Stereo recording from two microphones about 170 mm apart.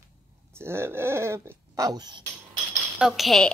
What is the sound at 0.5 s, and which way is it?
Speech, 15° right (ahead or behind).